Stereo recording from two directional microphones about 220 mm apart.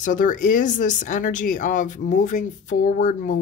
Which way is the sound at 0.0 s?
35° left (ahead or behind).